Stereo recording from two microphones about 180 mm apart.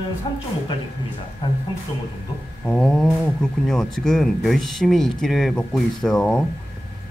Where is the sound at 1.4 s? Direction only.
25° left (ahead or behind).